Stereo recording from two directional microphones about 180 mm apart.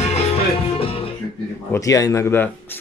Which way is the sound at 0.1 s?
30° left (ahead or behind).